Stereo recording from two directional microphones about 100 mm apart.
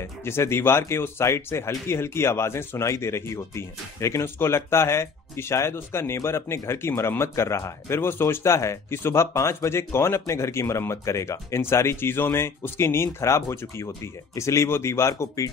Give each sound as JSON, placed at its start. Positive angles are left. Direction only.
{"t": 0.2, "sound": "speech", "side_deg": 25}